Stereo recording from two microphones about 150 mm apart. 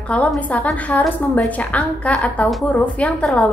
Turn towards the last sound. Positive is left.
turn(degrees=5)  # may be behind; listen again after turning